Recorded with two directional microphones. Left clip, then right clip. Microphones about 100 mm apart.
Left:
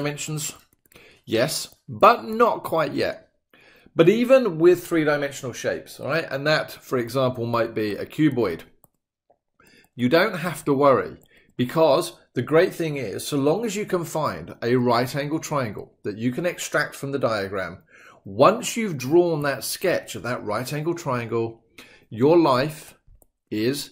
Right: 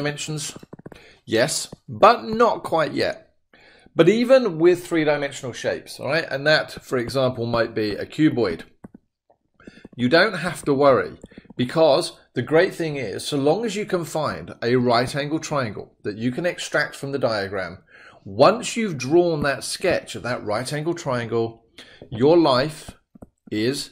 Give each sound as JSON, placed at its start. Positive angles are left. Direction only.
{"t": 0.0, "sound": "a man's voice", "side_deg": -15}
{"t": 5.9, "sound": "speech", "side_deg": -20}
{"t": 9.7, "sound": "speech", "side_deg": -10}